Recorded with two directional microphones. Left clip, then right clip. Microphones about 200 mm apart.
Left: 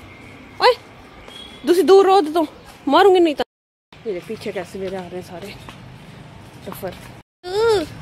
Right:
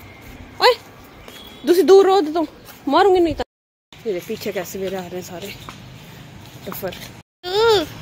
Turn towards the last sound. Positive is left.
turn(degrees=5)  # may be behind; listen again after turning